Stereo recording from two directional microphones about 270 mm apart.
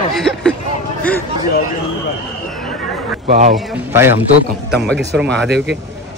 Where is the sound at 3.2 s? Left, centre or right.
Right.